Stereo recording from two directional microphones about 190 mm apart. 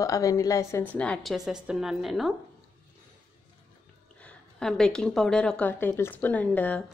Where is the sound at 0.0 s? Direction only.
15° left (ahead or behind); by 2.3 s centre (ahead or behind).